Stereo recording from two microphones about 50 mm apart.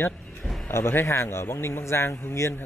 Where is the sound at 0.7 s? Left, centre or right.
Left.